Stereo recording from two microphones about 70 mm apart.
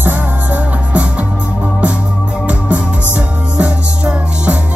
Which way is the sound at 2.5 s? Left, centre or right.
Right.